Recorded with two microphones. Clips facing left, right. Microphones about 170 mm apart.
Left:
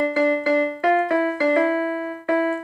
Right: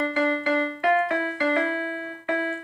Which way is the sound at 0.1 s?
40° left (ahead or behind).